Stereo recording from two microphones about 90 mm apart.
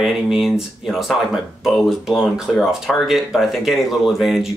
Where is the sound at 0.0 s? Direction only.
5° right (ahead or behind).